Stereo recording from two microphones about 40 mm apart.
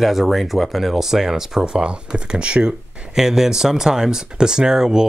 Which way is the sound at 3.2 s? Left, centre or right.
Centre.